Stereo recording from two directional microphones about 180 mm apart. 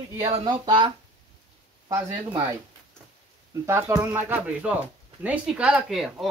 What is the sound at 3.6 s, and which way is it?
Speech, 15° right (ahead or behind).